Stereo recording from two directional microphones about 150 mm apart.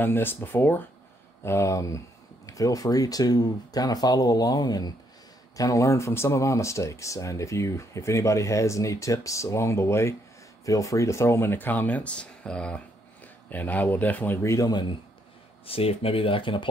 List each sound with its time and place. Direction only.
0.0 s speech: 15° left (ahead or behind)
15.6 s speech: 40° left (ahead or behind)